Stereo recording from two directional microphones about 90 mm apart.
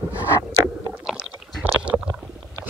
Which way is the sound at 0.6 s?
30° right (ahead or behind).